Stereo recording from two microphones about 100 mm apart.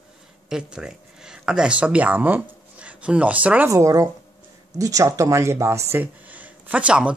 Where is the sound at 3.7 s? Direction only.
30° right (ahead or behind).